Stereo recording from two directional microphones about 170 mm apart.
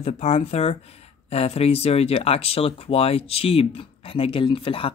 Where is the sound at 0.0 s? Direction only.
40° left (ahead or behind).